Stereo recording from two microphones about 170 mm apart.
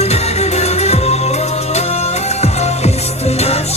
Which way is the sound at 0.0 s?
40° left (ahead or behind).